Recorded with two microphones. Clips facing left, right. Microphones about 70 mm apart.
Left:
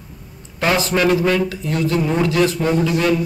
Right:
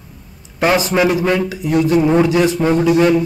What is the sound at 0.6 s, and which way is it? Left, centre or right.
A man's voice, centre.